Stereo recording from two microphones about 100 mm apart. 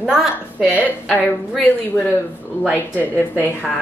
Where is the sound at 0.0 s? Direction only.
5° right (ahead or behind).